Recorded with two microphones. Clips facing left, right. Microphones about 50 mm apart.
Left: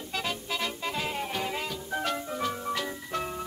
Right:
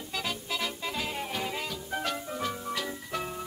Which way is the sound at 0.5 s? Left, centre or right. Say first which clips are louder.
Left 1 dB; centre.